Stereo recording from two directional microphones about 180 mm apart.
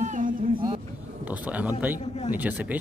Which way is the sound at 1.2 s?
10° right (ahead or behind).